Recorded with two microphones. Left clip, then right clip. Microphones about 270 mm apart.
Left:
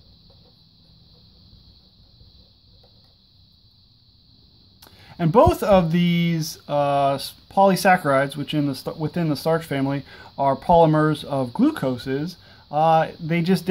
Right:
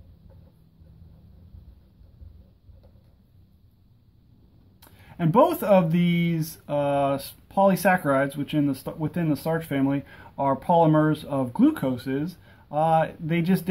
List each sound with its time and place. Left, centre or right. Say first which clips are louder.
4.7 s speech: left 4 dB; centre